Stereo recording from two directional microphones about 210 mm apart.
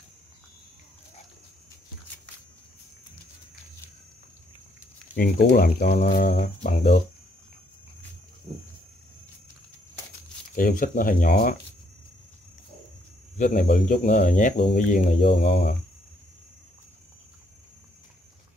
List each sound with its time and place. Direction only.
5.1 s speech: 45° left (ahead or behind); by 7.0 s 30° left (ahead or behind)
10.5 s speech: 40° left (ahead or behind)
13.4 s speech: 45° left (ahead or behind)
13.9 s speech: 35° left (ahead or behind)